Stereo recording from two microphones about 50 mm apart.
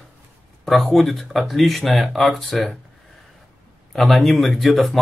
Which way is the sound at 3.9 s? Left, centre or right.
Centre.